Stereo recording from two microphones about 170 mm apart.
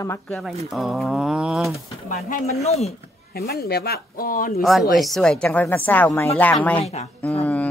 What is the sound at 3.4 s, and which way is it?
Speech, 65° left (ahead or behind).